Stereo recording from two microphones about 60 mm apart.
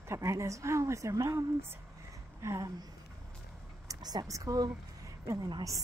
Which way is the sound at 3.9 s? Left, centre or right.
Right.